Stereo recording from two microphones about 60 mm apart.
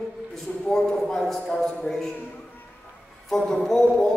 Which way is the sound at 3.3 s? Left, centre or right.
Centre.